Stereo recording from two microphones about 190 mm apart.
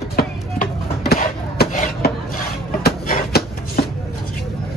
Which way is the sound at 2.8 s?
55° left (ahead or behind).